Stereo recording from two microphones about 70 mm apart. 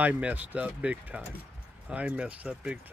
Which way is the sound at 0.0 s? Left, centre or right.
Right.